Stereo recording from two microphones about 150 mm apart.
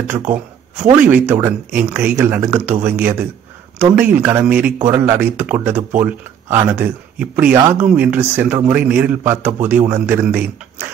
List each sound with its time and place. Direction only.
0.9 s a man's voice: 10° right (ahead or behind)